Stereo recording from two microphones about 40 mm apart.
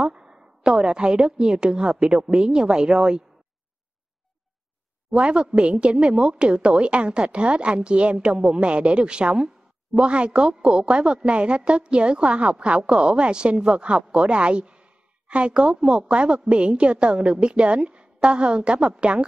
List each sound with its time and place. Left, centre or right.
0.0 s a woman's voice: right
5.2 s a woman's voice: right